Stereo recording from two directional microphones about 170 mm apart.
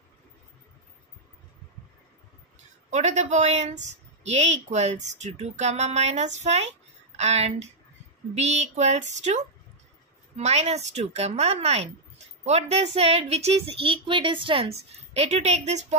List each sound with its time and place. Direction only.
2.9 s a woman's voice: 40° right (ahead or behind)